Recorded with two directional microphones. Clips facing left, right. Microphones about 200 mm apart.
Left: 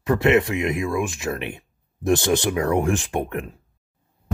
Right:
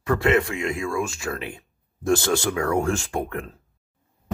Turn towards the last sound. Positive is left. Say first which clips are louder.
# left 2 dB
turn(degrees=20)  # may be behind; listen again after turning